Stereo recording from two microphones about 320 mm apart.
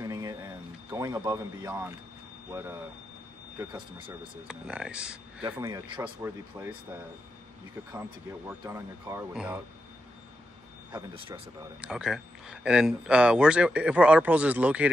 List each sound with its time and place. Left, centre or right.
0.0 s a sound: centre
0.8 s speech: centre
3.5 s speech: centre
4.5 s speech: centre
7.9 s speech: centre
10.9 s speech: centre
11.8 s speech: centre